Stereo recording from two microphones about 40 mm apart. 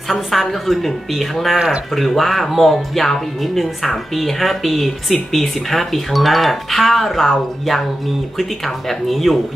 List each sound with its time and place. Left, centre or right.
0.1 s speech: centre